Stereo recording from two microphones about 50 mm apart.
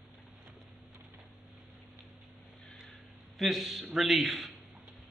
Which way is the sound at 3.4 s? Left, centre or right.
Centre.